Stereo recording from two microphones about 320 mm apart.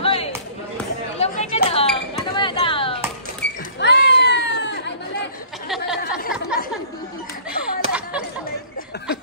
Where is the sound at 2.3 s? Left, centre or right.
Centre.